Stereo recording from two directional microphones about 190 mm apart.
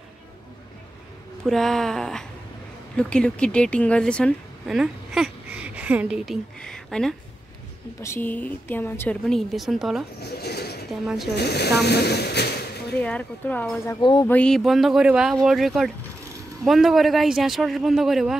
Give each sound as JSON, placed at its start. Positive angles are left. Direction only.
{"t": 1.4, "sound": "a man's voice", "side_deg": 0}
{"t": 10.2, "sound": "a sound", "side_deg": 55}
{"t": 10.9, "sound": "a man's voice", "side_deg": 0}
{"t": 11.3, "sound": "speech", "side_deg": 60}
{"t": 13.0, "sound": "a woman's voice", "side_deg": 10}